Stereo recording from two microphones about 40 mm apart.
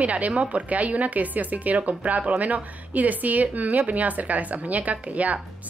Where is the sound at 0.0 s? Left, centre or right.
Right.